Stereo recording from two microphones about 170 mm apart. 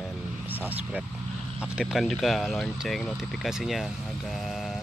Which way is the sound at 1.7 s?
Centre (ahead or behind).